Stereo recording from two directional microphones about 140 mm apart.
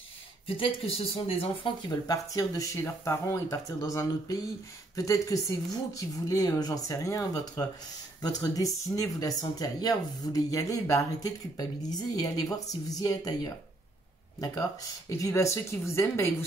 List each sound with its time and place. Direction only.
0.5 s speech: 40° left (ahead or behind)
2.0 s speech: 25° left (ahead or behind)